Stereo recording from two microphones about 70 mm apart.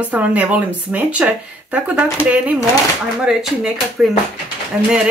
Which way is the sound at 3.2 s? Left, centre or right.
Centre.